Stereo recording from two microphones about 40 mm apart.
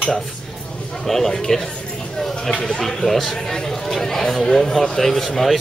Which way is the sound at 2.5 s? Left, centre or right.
Centre.